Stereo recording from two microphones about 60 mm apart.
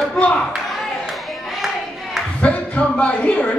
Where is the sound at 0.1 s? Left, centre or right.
Centre.